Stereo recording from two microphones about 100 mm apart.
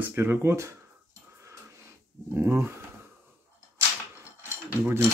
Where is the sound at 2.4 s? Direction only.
25° right (ahead or behind).